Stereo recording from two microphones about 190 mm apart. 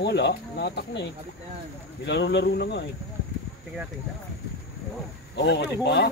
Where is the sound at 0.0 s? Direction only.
60° left (ahead or behind).